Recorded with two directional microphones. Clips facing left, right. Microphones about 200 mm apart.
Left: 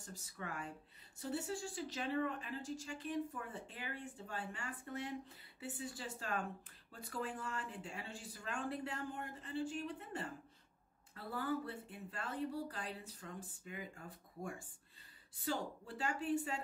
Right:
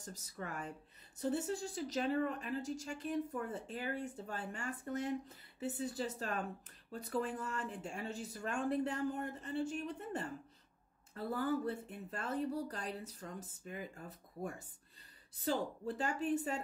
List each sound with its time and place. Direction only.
0.0 s speech: 40° right (ahead or behind)